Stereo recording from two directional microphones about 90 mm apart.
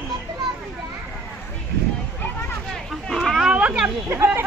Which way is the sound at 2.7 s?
5° left (ahead or behind).